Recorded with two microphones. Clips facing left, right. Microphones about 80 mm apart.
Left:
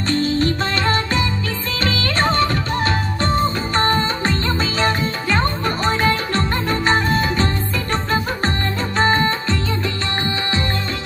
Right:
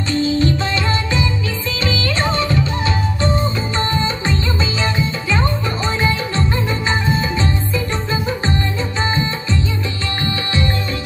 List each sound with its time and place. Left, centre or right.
0.1 s music: left
10.2 s music: left